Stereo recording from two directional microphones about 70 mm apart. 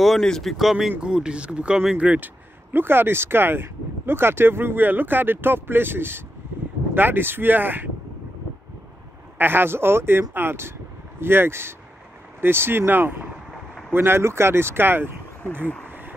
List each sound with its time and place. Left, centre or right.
0.0 s speech: centre; by 7.9 s right
9.4 s speech: right
15.6 s speech: left